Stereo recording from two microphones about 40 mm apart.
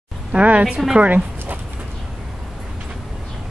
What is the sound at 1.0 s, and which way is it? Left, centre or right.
Dog, right.